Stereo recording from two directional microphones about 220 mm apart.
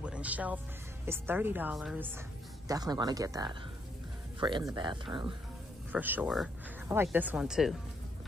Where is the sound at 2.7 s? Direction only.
15° right (ahead or behind).